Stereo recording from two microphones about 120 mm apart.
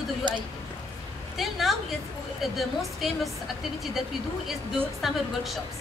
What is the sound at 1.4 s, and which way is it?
A woman's voice, centre (ahead or behind).